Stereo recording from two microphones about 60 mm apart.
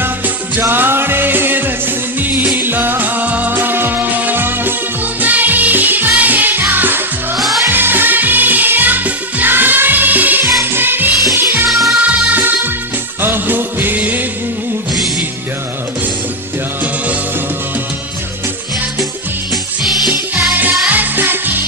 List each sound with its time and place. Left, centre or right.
0.6 s music: right
7.3 s music: centre
7.6 s music: right
11.7 s music: centre
12.3 s music: right
20.8 s music: right